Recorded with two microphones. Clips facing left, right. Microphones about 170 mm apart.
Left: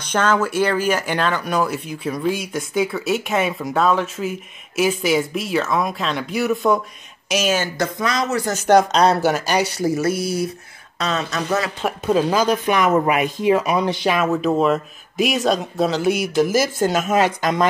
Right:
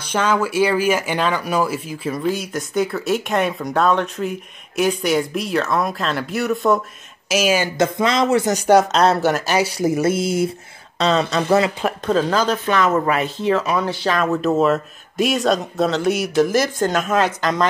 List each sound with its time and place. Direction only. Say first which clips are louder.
0.1 s speech: even; 10° right (ahead or behind)
7.7 s speech: right 4 dB; 25° right (ahead or behind)
8.6 s speech: left 1 dB; 5° right (ahead or behind)
9.8 s speech: right 2 dB; 20° right (ahead or behind)
11.8 s speech: even; 10° left (ahead or behind)